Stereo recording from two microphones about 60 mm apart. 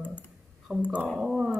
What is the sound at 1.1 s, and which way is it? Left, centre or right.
Speech, centre.